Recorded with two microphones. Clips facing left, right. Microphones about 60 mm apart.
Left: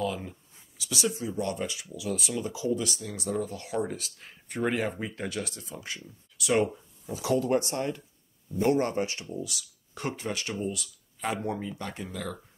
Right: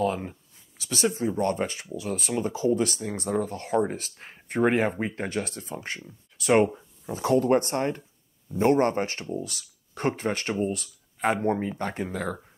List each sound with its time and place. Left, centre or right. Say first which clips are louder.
0.0 s speech: right 5 dB; right